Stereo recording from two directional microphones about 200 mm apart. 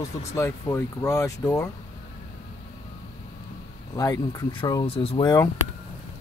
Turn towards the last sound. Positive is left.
turn(degrees=20)  # may be behind; listen again after turning